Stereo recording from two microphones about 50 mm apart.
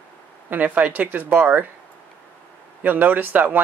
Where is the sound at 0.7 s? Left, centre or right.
Right.